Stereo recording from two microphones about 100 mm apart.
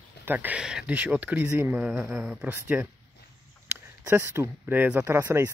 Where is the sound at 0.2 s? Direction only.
20° right (ahead or behind).